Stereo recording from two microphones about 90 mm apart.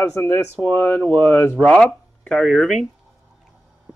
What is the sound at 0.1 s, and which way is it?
Speech, 25° left (ahead or behind).